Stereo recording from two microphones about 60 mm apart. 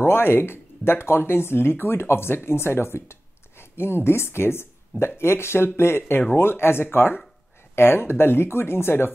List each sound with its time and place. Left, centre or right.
0.0 s speech: left